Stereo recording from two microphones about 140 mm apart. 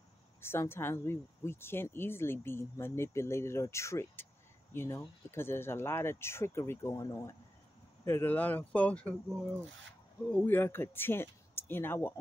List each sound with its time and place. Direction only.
0.4 s speech: 15° left (ahead or behind)
10.3 s speech: 15° left (ahead or behind)